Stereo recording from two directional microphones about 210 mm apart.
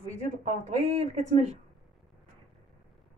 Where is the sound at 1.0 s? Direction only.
30° right (ahead or behind).